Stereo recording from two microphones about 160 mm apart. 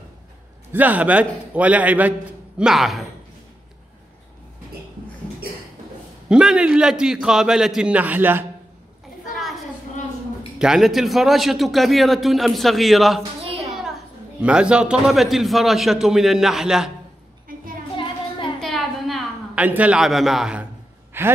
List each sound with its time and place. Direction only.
0.7 s a man's voice: 10° right (ahead or behind)
6.2 s a man's voice: 5° right (ahead or behind)
10.6 s a man's voice: 5° right (ahead or behind)
13.4 s a sound: 35° right (ahead or behind)
14.4 s a man's voice: 5° right (ahead or behind)
18.6 s a sound: centre (ahead or behind)
21.2 s speech: 15° right (ahead or behind)